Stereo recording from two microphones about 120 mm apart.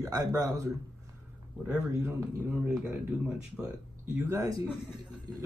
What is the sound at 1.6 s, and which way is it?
Speech, 5° right (ahead or behind).